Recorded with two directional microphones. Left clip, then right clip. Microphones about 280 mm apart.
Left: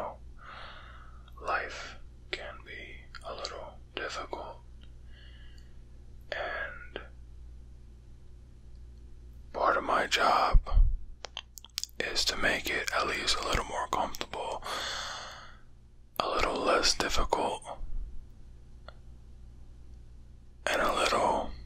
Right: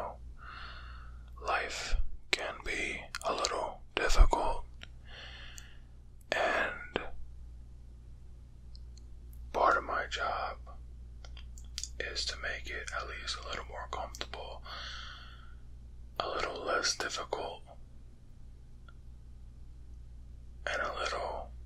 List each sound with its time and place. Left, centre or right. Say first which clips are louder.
0.0 s whispering: left 2 dB; centre
1.7 s whispering: right 2 dB; right
9.8 s whispering: left 7 dB; centre
20.6 s whispering: left 7 dB; centre